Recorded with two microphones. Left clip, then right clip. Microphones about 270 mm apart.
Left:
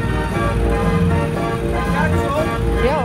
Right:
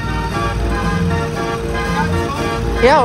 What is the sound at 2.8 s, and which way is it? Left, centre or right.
Music, right.